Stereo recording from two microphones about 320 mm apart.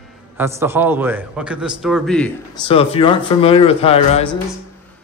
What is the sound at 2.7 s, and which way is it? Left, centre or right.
A man's voice, centre.